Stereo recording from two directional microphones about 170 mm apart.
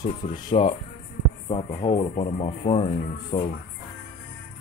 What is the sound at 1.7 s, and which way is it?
Speech, 40° left (ahead or behind).